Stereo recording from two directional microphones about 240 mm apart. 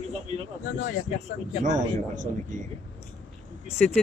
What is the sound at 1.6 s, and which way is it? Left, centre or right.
Speech, right.